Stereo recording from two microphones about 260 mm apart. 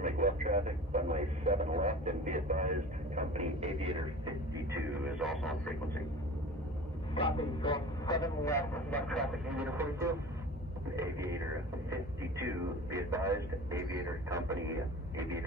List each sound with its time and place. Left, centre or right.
0.0 s speech: right
4.6 s speech: centre
7.2 s speech: left; by 11.4 s centre
12.9 s speech: centre